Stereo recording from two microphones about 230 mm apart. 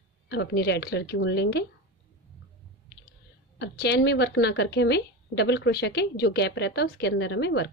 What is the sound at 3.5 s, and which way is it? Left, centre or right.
A woman's voice, left.